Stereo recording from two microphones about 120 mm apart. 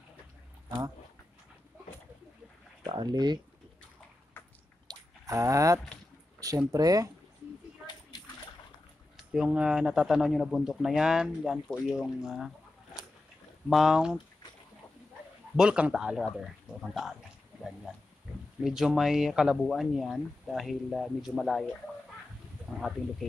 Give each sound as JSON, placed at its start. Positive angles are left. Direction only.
{"t": 2.9, "sound": "speech", "side_deg": -35}
{"t": 4.8, "sound": "a sound", "side_deg": -30}
{"t": 6.7, "sound": "speech", "side_deg": -30}
{"t": 9.1, "sound": "speech", "side_deg": -5}
{"t": 15.5, "sound": "a man's voice", "side_deg": -5}
{"t": 22.8, "sound": "speech", "side_deg": 0}